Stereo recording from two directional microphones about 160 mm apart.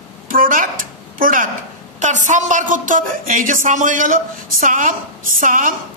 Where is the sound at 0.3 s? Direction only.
60° right (ahead or behind).